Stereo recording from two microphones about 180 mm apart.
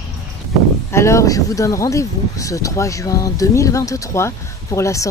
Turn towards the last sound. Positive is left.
turn(degrees=15)  # may be behind; listen again after turning